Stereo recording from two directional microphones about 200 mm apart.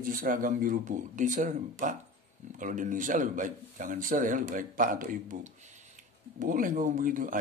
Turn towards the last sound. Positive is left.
turn(degrees=-45)  # may be behind; listen again after turning